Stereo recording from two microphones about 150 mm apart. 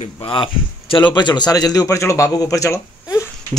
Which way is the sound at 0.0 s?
35° left (ahead or behind).